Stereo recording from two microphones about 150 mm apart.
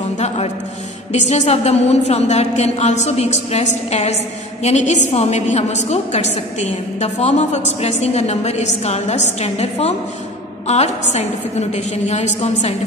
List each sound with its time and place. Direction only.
1.1 s a woman's voice: 50° left (ahead or behind)